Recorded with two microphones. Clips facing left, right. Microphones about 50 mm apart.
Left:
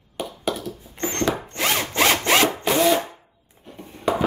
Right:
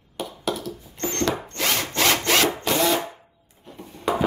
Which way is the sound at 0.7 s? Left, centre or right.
Centre.